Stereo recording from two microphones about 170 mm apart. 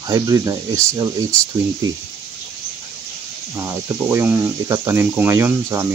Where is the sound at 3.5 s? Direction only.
15° right (ahead or behind).